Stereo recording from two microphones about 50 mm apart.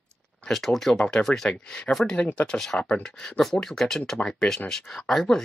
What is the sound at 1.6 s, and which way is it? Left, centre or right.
Speech, centre.